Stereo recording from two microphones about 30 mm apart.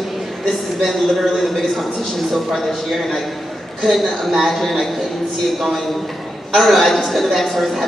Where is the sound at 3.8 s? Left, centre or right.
Centre.